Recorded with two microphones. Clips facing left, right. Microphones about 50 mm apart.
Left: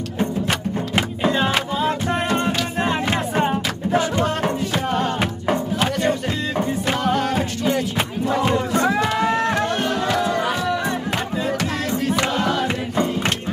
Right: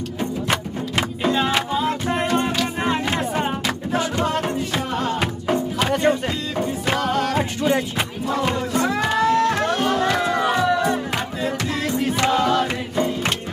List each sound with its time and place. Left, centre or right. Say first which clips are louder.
0.9 s music: even; left
8.7 s music: right 2 dB; left
12.6 s music: left 1 dB; centre